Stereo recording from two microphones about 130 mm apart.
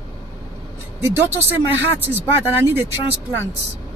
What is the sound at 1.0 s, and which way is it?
Speech, 15° right (ahead or behind).